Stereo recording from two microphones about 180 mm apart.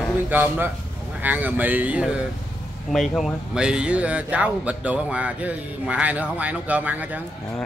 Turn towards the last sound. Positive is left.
turn(degrees=-10)  # may be behind; listen again after turning